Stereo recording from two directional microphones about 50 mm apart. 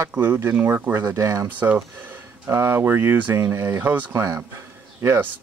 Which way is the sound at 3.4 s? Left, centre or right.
Right.